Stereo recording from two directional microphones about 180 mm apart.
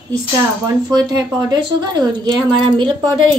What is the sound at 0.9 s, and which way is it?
Speech, 20° right (ahead or behind).